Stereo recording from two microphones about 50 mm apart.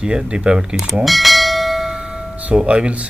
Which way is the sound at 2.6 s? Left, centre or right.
Right.